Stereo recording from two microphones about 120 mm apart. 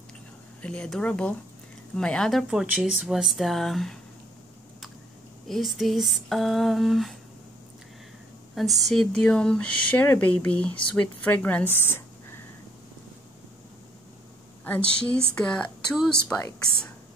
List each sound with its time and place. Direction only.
0.6 s speech: 10° left (ahead or behind)
5.5 s speech: centre (ahead or behind)
8.5 s speech: centre (ahead or behind)
11.8 s a sound: 20° left (ahead or behind)
14.6 s a woman's voice: 10° left (ahead or behind)